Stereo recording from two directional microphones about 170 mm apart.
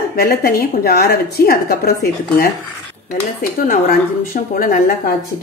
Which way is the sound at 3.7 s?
55° left (ahead or behind).